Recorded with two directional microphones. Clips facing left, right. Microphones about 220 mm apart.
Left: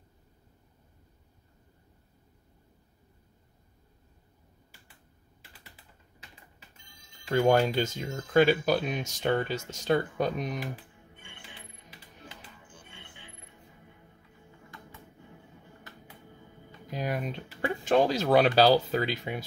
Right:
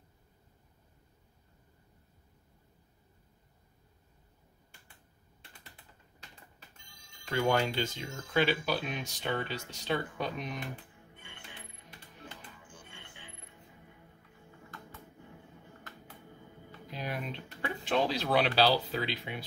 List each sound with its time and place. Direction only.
7.4 s speech: 45° left (ahead or behind)
10.6 s music: 5° left (ahead or behind)
16.1 s music: centre (ahead or behind)
16.8 s a sound: 50° left (ahead or behind)
17.6 s speech: 45° left (ahead or behind)